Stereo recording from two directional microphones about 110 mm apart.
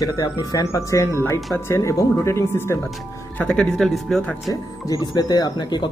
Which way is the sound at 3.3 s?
5° left (ahead or behind).